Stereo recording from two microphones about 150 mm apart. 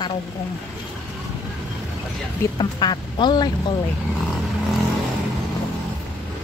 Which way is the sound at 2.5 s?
30° left (ahead or behind).